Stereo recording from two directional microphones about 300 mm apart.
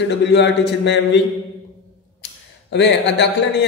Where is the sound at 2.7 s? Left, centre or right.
Left.